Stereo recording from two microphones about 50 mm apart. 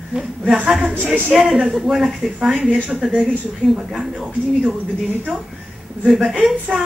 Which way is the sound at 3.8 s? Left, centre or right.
Centre.